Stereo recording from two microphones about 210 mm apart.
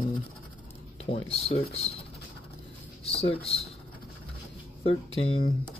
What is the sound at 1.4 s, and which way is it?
Speech, 30° left (ahead or behind).